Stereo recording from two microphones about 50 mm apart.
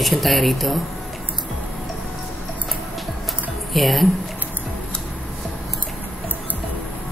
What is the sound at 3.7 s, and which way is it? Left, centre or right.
Speech, centre.